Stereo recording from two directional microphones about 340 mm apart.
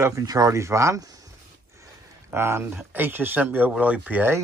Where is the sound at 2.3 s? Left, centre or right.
Centre.